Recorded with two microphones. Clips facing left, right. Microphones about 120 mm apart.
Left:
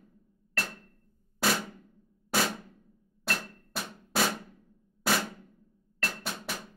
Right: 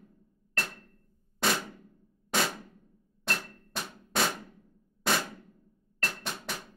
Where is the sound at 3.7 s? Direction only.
5° left (ahead or behind).